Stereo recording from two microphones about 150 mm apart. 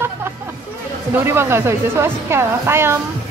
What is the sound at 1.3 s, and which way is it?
A woman's voice, 15° right (ahead or behind).